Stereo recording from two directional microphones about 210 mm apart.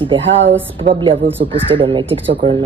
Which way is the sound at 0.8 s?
25° right (ahead or behind).